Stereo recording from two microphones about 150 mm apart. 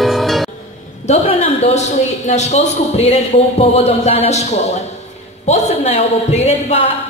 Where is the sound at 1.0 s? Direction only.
45° left (ahead or behind).